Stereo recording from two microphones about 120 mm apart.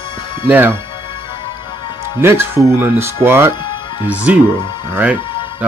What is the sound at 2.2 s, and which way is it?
Speech, 20° right (ahead or behind).